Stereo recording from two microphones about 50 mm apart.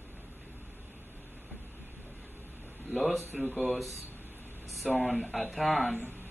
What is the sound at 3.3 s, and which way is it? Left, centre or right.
Speech, centre.